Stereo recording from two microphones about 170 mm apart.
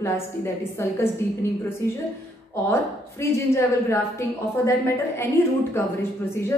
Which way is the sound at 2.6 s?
15° left (ahead or behind).